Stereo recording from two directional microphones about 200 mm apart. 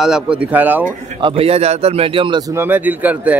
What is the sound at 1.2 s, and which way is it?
A man's voice, 25° right (ahead or behind).